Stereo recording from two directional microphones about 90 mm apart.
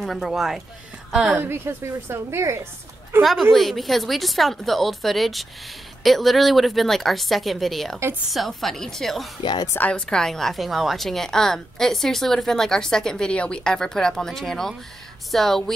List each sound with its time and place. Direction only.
0.0 s a woman's voice: centre (ahead or behind)
1.4 s a woman's voice: 25° right (ahead or behind)
3.2 s a woman's voice: centre (ahead or behind)
9.4 s a woman's voice: 55° left (ahead or behind)
9.8 s a woman's voice: 15° left (ahead or behind)